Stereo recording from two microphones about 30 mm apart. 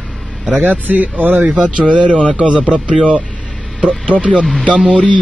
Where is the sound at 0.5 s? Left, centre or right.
Right.